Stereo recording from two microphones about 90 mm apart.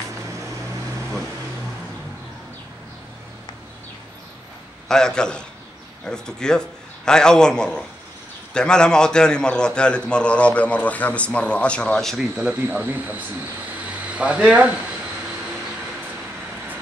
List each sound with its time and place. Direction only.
4.8 s a man's voice: 5° left (ahead or behind)
12.5 s speech: 20° right (ahead or behind)
13.8 s a sound: 15° right (ahead or behind)